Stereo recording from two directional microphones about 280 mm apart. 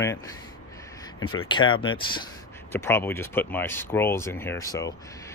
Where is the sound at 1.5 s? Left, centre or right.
Centre.